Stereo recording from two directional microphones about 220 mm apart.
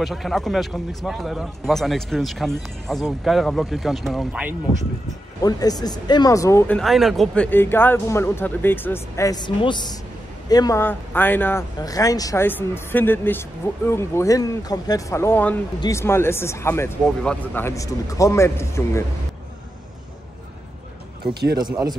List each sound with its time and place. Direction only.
0.0 s a man's voice: centre (ahead or behind)
5.4 s speech: 15° left (ahead or behind)
6.8 s speech: centre (ahead or behind)